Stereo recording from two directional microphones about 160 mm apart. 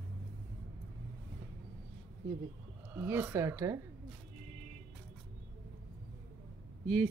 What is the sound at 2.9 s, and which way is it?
Speech, 15° right (ahead or behind).